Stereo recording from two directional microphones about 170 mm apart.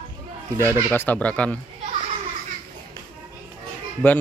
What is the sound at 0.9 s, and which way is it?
Speech, 10° left (ahead or behind).